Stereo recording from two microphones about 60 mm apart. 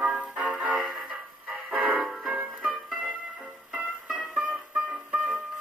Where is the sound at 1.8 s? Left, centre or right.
Right.